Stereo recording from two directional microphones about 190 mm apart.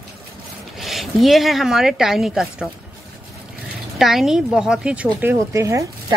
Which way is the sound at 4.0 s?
Centre (ahead or behind).